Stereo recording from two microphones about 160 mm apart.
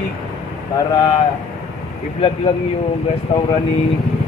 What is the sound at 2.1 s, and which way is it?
Speech, 35° left (ahead or behind).